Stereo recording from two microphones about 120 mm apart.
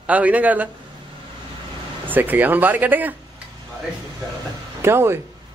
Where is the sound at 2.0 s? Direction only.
15° right (ahead or behind).